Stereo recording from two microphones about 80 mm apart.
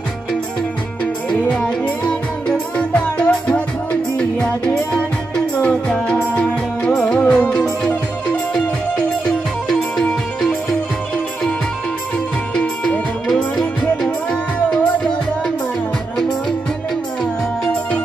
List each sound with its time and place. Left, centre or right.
1.4 s music: centre
13.3 s music: centre